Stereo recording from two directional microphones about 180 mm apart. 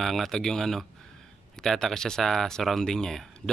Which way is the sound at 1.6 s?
Centre (ahead or behind).